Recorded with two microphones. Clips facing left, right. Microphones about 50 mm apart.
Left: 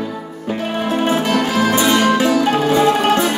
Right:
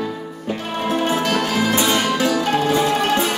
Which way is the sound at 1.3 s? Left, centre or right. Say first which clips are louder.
Left 3 dB; left.